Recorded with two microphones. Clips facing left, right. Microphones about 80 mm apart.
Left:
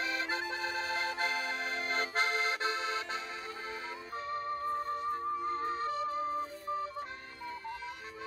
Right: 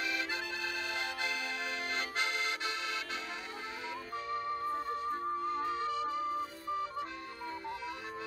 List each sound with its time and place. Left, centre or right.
0.0 s accordion: left
5.5 s music: left